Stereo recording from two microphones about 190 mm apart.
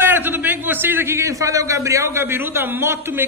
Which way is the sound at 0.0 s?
10° right (ahead or behind).